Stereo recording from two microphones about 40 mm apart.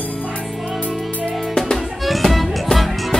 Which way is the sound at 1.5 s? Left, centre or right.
Centre.